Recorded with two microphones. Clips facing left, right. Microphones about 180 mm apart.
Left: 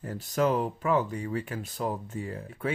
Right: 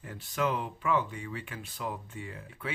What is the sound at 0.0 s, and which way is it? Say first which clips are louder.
Speech: left 5 dB; 40° left (ahead or behind).